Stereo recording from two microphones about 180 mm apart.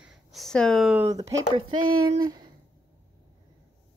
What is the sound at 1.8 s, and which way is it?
Speech, 55° right (ahead or behind).